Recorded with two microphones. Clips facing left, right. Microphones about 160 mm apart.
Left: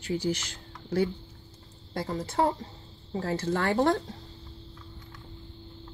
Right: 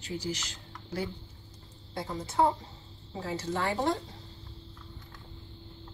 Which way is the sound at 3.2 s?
55° left (ahead or behind).